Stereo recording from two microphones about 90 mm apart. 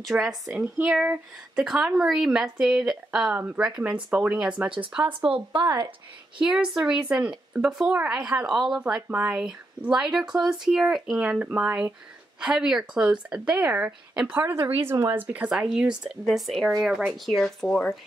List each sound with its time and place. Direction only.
0.0 s speech: 5° right (ahead or behind)
5.5 s a woman's voice: 55° right (ahead or behind)
6.3 s speech: 5° right (ahead or behind)
11.2 s speech: 15° right (ahead or behind)
14.5 s speech: 30° right (ahead or behind)
15.5 s speech: 10° right (ahead or behind)
16.3 s speech: centre (ahead or behind)